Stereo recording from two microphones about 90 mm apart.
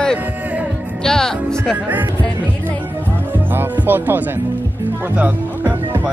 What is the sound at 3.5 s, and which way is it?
Speech, 20° right (ahead or behind).